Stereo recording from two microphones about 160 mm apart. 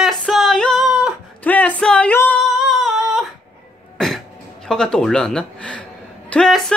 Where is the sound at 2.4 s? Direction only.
Centre (ahead or behind).